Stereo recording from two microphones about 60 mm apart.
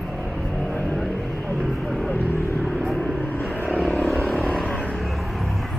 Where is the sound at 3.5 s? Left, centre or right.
Left.